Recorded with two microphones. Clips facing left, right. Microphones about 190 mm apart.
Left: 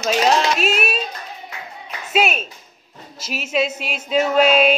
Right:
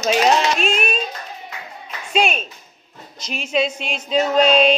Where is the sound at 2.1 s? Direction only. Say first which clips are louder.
Even; 5° left (ahead or behind).